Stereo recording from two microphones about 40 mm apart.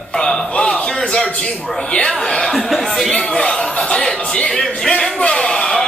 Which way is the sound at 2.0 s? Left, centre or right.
Centre.